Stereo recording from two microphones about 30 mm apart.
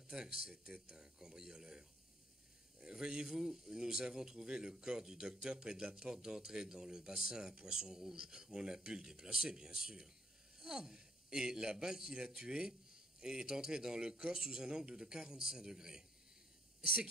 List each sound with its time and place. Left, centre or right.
0.1 s speech: centre
3.0 s speech: right
3.3 s a man's voice: centre